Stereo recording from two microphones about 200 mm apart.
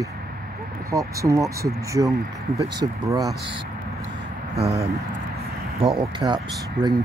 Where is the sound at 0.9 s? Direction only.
15° right (ahead or behind).